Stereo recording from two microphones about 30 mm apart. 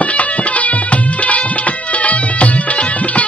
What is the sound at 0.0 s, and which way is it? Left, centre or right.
Music, left.